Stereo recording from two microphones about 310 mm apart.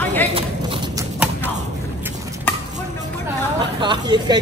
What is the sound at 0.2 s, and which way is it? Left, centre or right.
Clip-clop, centre.